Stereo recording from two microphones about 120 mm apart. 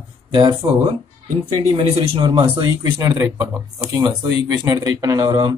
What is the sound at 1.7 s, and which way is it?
Speech, 55° right (ahead or behind).